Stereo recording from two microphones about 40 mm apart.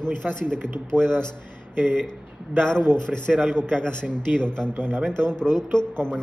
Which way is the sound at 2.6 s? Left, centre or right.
Left.